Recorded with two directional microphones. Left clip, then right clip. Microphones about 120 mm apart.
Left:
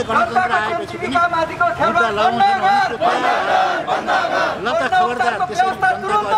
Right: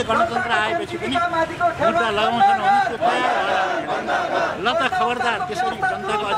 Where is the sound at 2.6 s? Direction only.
30° left (ahead or behind).